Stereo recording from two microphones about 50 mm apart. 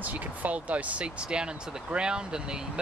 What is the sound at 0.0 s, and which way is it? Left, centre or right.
Speech, right.